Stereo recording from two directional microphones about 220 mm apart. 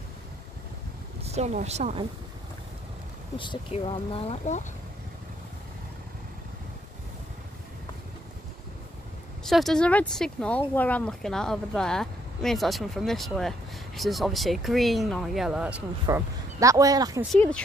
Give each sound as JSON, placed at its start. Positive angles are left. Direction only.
{"t": 1.2, "sound": "speech", "side_deg": -30}
{"t": 3.3, "sound": "speech", "side_deg": 25}
{"t": 9.4, "sound": "speech", "side_deg": 0}
{"t": 17.3, "sound": "speech", "side_deg": 5}